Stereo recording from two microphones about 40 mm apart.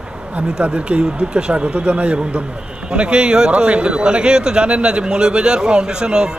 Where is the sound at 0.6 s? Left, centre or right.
Right.